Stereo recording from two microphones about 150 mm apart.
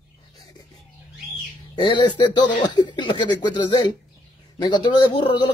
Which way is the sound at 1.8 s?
30° left (ahead or behind).